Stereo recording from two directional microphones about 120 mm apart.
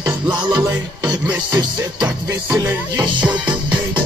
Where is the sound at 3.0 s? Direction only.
40° right (ahead or behind).